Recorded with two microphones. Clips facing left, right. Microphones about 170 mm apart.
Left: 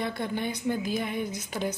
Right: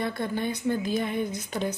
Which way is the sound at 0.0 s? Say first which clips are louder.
Right 2 dB; 15° left (ahead or behind).